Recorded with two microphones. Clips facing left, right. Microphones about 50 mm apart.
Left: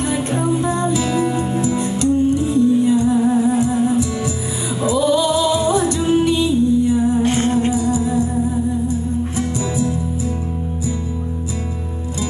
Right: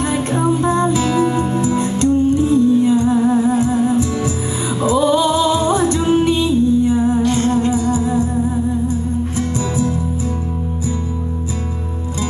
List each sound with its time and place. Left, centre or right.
0.0 s music: right
7.2 s music: left
7.7 s music: right